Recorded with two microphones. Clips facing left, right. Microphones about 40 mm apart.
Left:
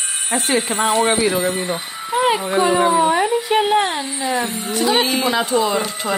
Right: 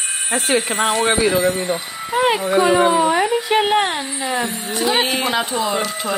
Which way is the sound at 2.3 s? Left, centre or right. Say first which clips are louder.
Right 1 dB; right.